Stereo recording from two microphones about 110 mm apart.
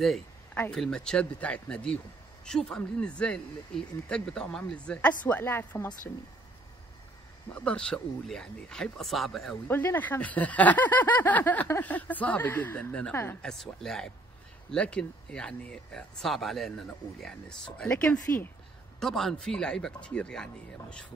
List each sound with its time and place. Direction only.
0.6 s speech: 10° left (ahead or behind)
7.5 s speech: 10° left (ahead or behind)
9.7 s speech: 20° left (ahead or behind)
13.4 s speech: 5° left (ahead or behind)